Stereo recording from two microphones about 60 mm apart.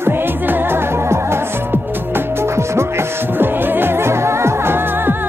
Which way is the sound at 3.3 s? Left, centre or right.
Right.